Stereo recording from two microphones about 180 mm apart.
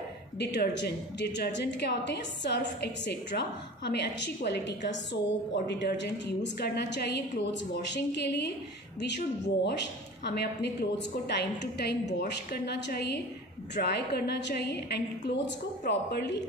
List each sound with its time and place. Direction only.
0.4 s a woman's voice: 70° left (ahead or behind)
9.7 s a woman's voice: 65° left (ahead or behind)